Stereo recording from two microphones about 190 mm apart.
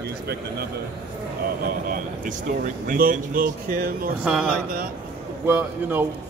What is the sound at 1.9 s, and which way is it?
Speech, 45° right (ahead or behind).